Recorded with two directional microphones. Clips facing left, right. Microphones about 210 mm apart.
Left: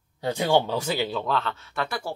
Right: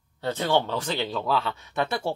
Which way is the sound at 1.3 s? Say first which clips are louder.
Right 1 dB; 10° right (ahead or behind).